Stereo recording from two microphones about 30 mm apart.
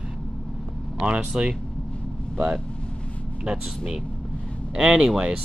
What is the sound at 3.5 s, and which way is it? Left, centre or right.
Speech, right.